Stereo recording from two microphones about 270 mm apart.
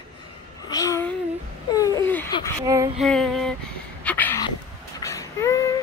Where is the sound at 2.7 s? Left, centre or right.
Centre.